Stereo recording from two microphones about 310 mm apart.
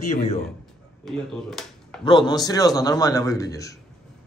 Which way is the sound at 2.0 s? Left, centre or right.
Centre.